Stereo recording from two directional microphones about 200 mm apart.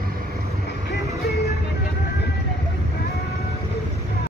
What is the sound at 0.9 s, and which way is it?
Music, 50° left (ahead or behind).